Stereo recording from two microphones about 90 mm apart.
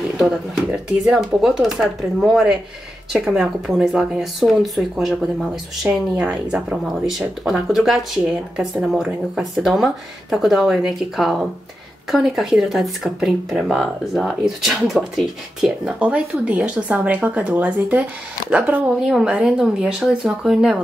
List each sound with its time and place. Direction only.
0.7 s speech: 5° right (ahead or behind)
18.9 s speech: 5° right (ahead or behind)